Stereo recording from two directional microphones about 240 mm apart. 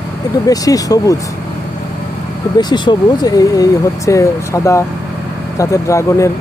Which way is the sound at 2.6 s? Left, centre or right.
Centre.